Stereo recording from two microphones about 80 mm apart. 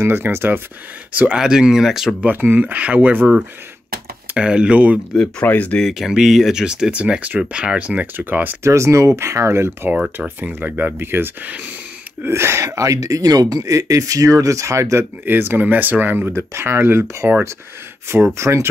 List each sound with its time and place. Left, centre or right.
0.0 s speech: right
1.4 s speech: centre
2.2 s speech: right
4.3 s speech: centre
5.1 s speech: centre
5.5 s speech: centre
5.9 s speech: centre; by 8.5 s right
8.6 s speech: right
9.8 s speech: centre; by 15.0 s right
15.2 s speech: right